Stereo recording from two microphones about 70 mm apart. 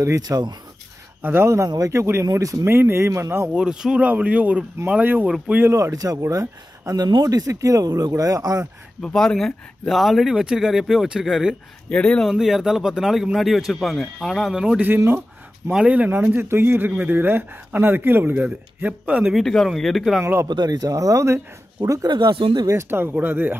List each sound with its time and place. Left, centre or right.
0.2 s speech: right
1.2 s speech: right
3.5 s speech: centre
4.0 s speech: right
5.7 s speech: right
7.0 s speech: right
9.0 s speech: centre
11.9 s speech: centre
12.3 s speech: centre
19.3 s speech: centre
20.2 s speech: right
20.4 s speech: right
22.0 s speech: right
22.7 s speech: right